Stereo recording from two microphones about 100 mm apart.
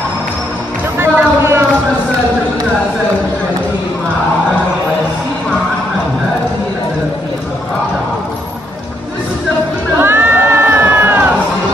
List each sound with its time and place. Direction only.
0.9 s basketball bounce: 25° right (ahead or behind)
9.9 s crowd: 20° right (ahead or behind)